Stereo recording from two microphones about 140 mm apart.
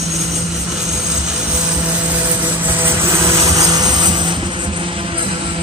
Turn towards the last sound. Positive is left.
turn(degrees=-30)  # may be behind; listen again after turning